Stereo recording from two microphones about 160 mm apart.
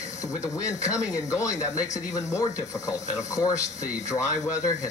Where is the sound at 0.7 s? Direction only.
20° left (ahead or behind).